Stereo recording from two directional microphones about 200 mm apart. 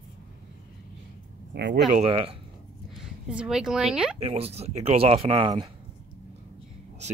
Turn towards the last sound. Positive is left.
turn(degrees=-25)  # may be behind; listen again after turning